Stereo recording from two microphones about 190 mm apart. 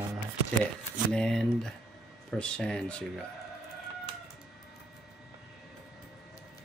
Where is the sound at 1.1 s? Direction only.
5° left (ahead or behind).